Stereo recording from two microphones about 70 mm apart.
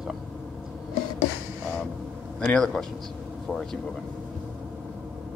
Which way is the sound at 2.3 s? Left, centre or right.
Centre.